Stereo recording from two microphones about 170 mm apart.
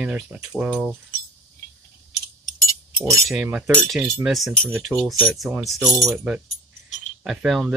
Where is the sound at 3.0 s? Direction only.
Centre (ahead or behind).